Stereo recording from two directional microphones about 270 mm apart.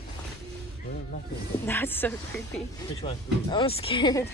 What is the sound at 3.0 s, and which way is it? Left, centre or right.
Speech, centre.